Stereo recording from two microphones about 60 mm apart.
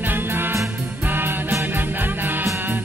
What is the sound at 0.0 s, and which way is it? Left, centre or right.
Music, right.